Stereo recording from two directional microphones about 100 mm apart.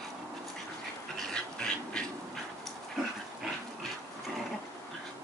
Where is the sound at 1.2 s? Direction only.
10° left (ahead or behind).